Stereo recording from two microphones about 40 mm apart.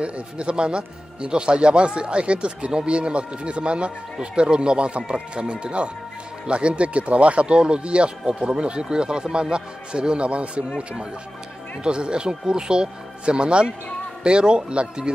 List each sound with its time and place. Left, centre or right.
0.0 s speech: right
11.8 s speech: right